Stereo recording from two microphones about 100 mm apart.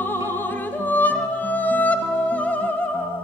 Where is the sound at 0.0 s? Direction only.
20° left (ahead or behind).